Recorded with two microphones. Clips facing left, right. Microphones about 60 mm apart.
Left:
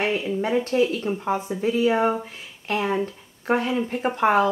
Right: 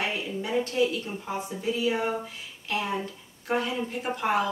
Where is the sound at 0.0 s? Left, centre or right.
Left.